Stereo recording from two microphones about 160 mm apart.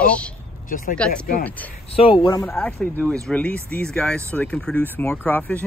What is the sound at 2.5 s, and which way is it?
Speech, 5° left (ahead or behind).